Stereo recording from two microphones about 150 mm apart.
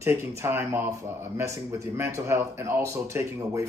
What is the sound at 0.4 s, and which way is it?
Speech, 20° right (ahead or behind).